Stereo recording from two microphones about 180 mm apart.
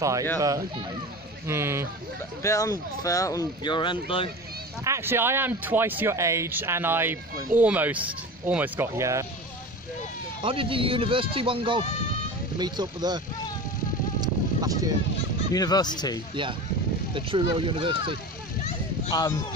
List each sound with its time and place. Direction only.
0.0 s speech: 20° right (ahead or behind)
1.5 s speech: 15° right (ahead or behind)
2.4 s speech: 15° left (ahead or behind)
4.8 s speech: 15° right (ahead or behind)
10.4 s speech: 30° right (ahead or behind)
14.2 s a sound: 20° right (ahead or behind)
15.5 s speech: 20° left (ahead or behind)
17.1 s speech: 30° right (ahead or behind)
19.1 s speech: 20° left (ahead or behind)